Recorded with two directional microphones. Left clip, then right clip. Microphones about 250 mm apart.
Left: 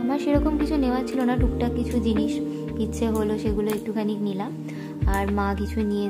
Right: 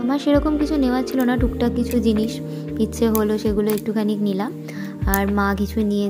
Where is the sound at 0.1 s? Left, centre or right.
Centre.